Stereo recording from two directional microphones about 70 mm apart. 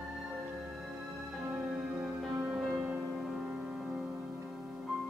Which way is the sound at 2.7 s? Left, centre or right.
Centre.